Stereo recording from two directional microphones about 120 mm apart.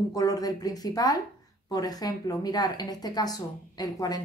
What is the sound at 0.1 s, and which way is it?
Speech, 30° left (ahead or behind).